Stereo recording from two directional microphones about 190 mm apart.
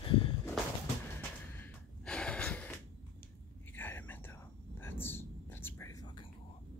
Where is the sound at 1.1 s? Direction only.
10° left (ahead or behind).